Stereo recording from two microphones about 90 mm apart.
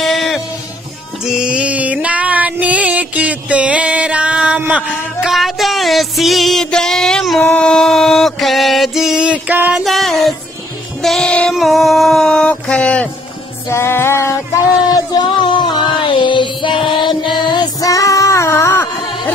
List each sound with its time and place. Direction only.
0.0 s music: centre (ahead or behind)
5.3 s music: centre (ahead or behind)
7.4 s mantra: 10° left (ahead or behind); by 9.8 s 15° right (ahead or behind)
9.8 s music: centre (ahead or behind)
13.7 s music: 30° left (ahead or behind)
15.2 s music: 60° left (ahead or behind)
17.7 s music: 40° left (ahead or behind)